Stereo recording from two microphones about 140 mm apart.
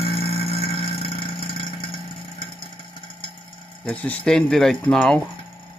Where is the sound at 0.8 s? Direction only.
40° left (ahead or behind).